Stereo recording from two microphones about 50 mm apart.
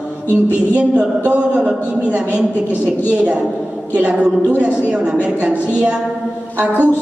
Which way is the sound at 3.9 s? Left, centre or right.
Right.